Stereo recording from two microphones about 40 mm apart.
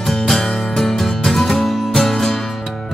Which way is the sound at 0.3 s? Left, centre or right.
Centre.